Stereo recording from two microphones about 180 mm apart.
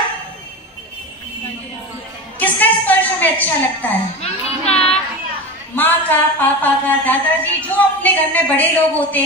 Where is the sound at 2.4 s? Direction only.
10° left (ahead or behind).